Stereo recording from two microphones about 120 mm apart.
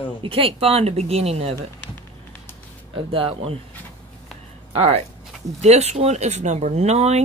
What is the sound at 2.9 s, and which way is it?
Speech, 50° right (ahead or behind).